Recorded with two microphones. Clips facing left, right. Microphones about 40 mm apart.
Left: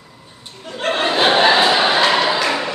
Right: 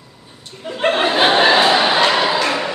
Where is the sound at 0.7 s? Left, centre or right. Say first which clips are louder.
Right 3 dB; centre.